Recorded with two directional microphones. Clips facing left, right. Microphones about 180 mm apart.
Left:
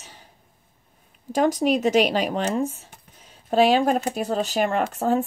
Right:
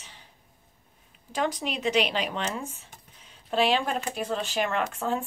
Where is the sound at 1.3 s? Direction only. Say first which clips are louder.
Left 9 dB; 45° left (ahead or behind).